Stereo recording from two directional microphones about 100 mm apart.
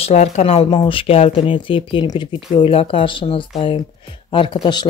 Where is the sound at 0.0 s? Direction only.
90° left.